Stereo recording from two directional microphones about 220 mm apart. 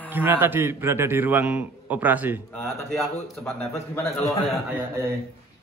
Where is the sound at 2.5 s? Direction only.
10° left (ahead or behind).